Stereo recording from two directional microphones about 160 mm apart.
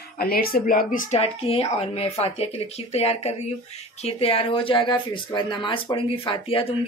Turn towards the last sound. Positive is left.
turn(degrees=30)  # may be behind; listen again after turning